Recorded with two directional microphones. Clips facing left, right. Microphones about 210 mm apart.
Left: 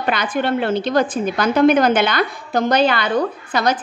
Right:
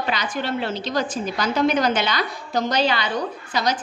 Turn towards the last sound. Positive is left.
turn(degrees=55)  # may be behind; listen again after turning